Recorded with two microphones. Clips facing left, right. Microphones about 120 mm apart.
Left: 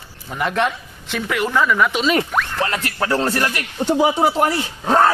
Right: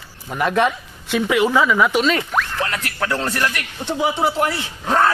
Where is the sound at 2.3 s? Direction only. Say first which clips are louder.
Left 1 dB; centre (ahead or behind).